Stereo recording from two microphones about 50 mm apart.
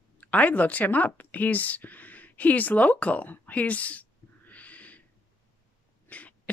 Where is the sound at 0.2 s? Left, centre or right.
Left.